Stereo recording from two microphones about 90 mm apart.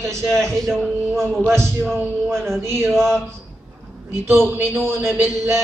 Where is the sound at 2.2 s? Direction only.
Centre (ahead or behind).